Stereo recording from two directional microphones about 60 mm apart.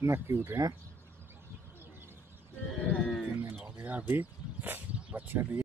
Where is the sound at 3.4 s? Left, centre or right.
Right.